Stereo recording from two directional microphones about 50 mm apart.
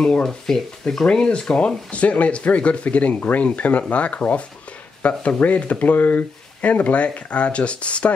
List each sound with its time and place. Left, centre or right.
0.0 s speech: centre
1.0 s speech: left